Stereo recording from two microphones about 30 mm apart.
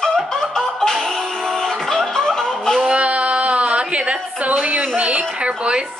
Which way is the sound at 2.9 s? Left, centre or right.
Right.